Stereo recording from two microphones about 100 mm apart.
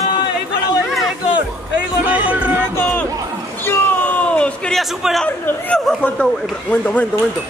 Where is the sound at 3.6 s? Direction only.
15° left (ahead or behind).